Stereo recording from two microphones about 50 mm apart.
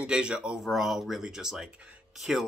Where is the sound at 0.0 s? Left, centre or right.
Centre.